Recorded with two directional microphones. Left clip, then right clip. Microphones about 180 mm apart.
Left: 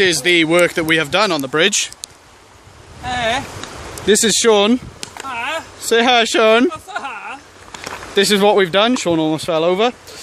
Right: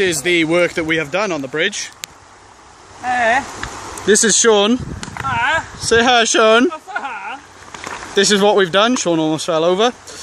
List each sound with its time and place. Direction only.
0.0 s speech: centre (ahead or behind)
1.1 s speech: 25° left (ahead or behind)
3.1 s speech: 10° left (ahead or behind)
5.9 s speech: 5° left (ahead or behind)
6.7 s a sound: 15° left (ahead or behind)
7.8 s speech: 5° left (ahead or behind)